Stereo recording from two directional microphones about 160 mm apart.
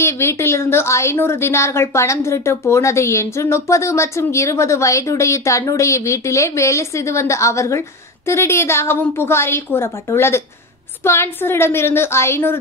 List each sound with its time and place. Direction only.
0.0 s a woman's voice: 15° left (ahead or behind)